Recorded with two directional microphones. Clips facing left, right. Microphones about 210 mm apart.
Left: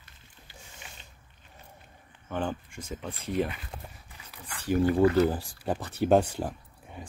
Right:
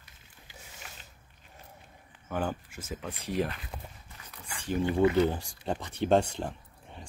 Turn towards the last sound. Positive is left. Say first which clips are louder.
# left 3 dB
turn(degrees=5)  # may be behind; listen again after turning